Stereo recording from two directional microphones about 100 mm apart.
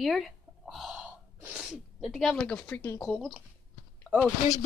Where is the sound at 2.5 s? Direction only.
15° left (ahead or behind).